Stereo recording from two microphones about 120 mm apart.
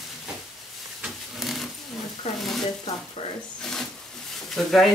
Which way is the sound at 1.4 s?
Centre (ahead or behind).